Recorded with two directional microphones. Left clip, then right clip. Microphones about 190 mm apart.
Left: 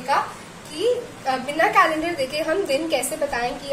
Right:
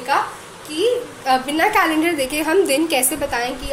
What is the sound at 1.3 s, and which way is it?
A woman's voice, 40° right (ahead or behind).